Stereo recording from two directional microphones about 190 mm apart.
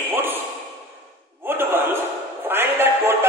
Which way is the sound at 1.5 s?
10° right (ahead or behind).